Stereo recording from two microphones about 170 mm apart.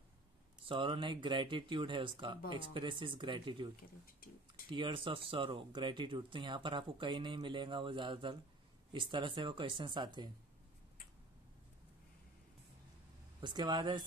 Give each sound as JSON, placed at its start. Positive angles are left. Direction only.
{"t": 0.7, "sound": "speech", "side_deg": -30}
{"t": 4.0, "sound": "a sound", "side_deg": 60}
{"t": 4.6, "sound": "speech", "side_deg": -30}
{"t": 13.4, "sound": "speech", "side_deg": -25}